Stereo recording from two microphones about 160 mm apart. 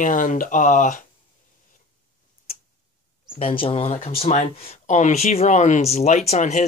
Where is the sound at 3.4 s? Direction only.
35° left (ahead or behind).